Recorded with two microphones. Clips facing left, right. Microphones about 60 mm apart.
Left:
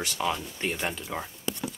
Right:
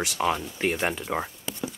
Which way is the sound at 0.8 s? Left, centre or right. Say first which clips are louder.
Right 5 dB; right.